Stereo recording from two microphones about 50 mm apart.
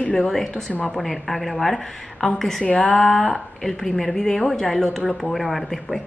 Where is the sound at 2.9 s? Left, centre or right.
Centre.